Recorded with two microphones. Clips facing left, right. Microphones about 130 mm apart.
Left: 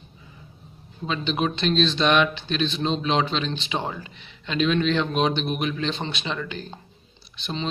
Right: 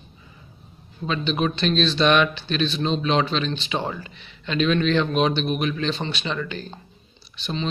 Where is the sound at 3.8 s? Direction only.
5° left (ahead or behind).